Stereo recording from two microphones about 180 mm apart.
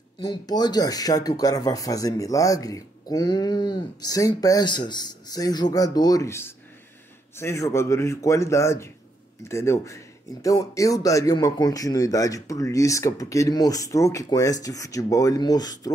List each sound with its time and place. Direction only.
0.2 s a man's voice: 25° left (ahead or behind)